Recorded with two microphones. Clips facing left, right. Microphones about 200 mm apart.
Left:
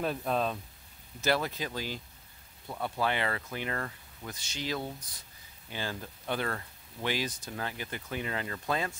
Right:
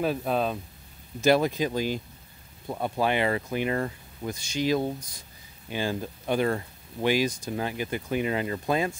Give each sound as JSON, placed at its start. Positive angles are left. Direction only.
{"t": 0.0, "sound": "speech", "side_deg": -5}
{"t": 1.2, "sound": "speech", "side_deg": -15}